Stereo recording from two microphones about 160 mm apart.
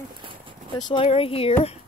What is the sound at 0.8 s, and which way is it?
Speech, 25° left (ahead or behind).